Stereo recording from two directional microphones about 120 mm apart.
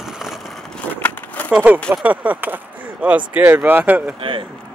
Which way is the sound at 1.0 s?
15° left (ahead or behind).